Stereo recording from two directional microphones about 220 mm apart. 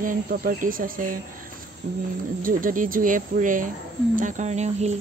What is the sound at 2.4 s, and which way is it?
Speech, 40° right (ahead or behind).